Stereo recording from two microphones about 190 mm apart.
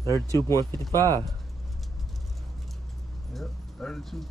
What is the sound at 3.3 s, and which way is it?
Speech, centre (ahead or behind).